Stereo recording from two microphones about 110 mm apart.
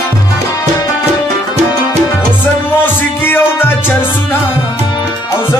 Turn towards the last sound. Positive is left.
turn(degrees=20)  # may be behind; listen again after turning